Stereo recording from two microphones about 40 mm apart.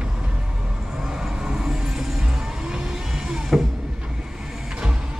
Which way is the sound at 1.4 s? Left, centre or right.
Centre.